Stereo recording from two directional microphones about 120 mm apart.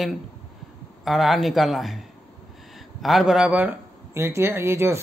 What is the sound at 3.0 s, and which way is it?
Speech, 5° right (ahead or behind).